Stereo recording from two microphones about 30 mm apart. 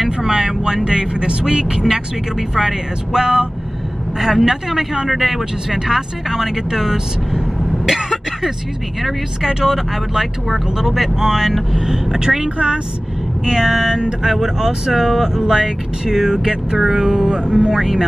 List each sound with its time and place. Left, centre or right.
0.2 s speech: right
4.2 s speech: centre
5.1 s speech: centre
5.7 s speech: centre
7.8 s throat clearing: centre
9.5 s speech: right
10.1 s speech: centre
11.8 s speech: right
12.5 s a woman's voice: right
13.5 s speech: centre